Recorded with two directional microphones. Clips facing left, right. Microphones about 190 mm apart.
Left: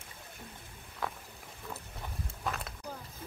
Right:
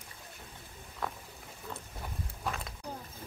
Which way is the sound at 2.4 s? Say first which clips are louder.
Even; centre (ahead or behind).